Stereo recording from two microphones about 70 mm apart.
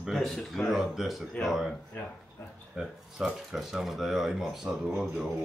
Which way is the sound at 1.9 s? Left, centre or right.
Left.